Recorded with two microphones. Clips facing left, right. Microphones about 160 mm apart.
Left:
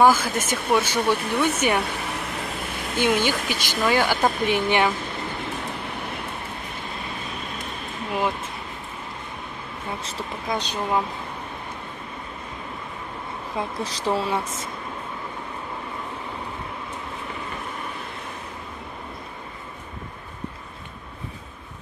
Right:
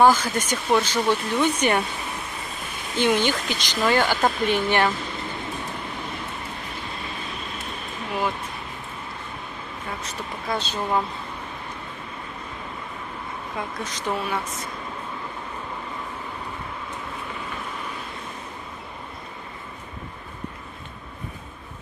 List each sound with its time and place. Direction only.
0.0 s speech: 10° left (ahead or behind)
3.0 s speech: 10° left (ahead or behind)
10.5 s speech: 15° left (ahead or behind)
13.6 s speech: 30° left (ahead or behind)